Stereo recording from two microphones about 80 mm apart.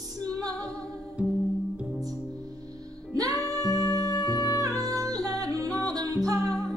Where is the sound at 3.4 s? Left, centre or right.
Left.